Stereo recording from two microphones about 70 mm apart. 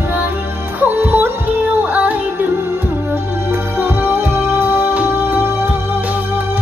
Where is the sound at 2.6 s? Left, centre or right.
Right.